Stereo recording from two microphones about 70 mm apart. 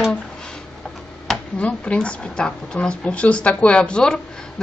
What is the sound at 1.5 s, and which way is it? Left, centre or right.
Speech, centre.